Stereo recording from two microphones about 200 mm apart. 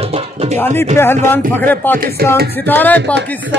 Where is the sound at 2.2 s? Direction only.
50° right (ahead or behind).